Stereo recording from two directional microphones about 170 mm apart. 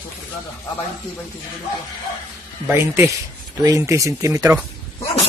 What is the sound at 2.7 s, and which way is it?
Speech, 15° right (ahead or behind).